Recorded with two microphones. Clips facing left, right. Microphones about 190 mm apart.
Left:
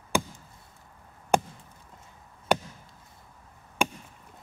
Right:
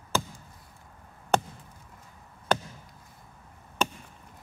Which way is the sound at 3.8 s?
10° left (ahead or behind).